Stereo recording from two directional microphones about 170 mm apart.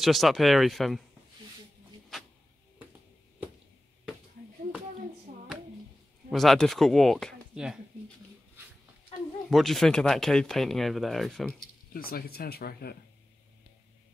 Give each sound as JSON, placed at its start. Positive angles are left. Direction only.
{"t": 0.0, "sound": "speech", "side_deg": 0}
{"t": 6.3, "sound": "speech", "side_deg": 0}
{"t": 9.5, "sound": "speech", "side_deg": 0}
{"t": 11.9, "sound": "speech", "side_deg": 60}